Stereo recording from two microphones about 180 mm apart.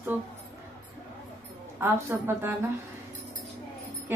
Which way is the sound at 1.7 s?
10° right (ahead or behind).